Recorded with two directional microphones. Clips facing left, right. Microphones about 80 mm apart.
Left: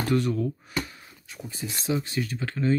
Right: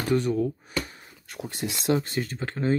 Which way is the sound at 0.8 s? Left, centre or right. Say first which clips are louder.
Even; right.